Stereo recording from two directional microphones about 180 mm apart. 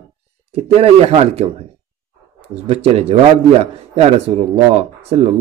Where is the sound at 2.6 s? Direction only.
35° right (ahead or behind).